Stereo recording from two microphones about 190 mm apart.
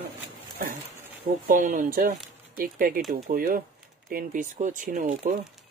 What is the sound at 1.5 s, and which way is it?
Speech, 45° right (ahead or behind).